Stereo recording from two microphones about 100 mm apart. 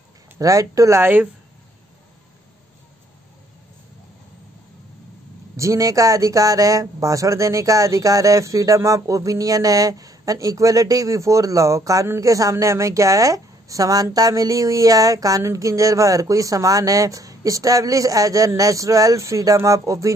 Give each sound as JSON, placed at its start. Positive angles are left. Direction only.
{"t": 0.4, "sound": "speech", "side_deg": -35}
{"t": 5.6, "sound": "speech", "side_deg": -35}